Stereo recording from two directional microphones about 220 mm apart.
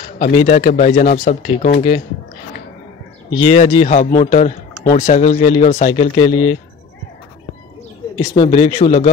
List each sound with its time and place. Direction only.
0.0 s a man's voice: 30° left (ahead or behind)
3.3 s speech: 25° left (ahead or behind)
8.2 s speech: 20° left (ahead or behind)